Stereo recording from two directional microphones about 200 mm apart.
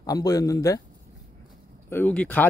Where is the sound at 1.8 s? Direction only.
10° left (ahead or behind).